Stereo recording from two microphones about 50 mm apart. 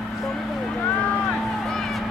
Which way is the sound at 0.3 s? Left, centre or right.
Centre.